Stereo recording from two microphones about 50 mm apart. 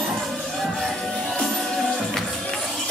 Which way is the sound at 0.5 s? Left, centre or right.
Centre.